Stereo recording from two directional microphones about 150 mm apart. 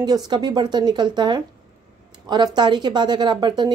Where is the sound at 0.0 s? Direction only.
30° right (ahead or behind).